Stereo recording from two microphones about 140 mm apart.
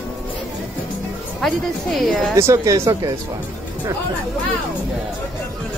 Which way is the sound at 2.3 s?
20° right (ahead or behind).